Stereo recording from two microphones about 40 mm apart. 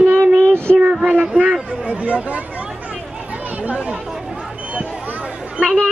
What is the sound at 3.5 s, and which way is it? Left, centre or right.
Speech, right.